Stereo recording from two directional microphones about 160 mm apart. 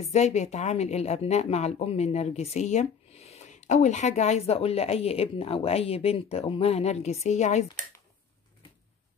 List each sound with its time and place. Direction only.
0.0 s a woman's voice: 45° left (ahead or behind)